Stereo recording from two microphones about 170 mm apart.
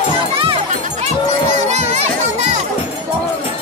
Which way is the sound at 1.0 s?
40° right (ahead or behind).